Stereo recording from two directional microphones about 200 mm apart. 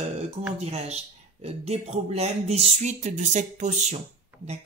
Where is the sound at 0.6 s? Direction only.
35° right (ahead or behind).